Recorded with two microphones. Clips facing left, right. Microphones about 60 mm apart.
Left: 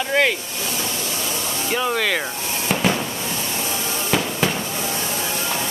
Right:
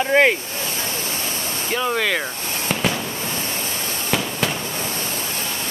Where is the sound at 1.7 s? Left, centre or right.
Centre.